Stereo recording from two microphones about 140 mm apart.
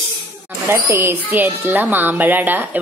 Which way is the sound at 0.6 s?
15° right (ahead or behind).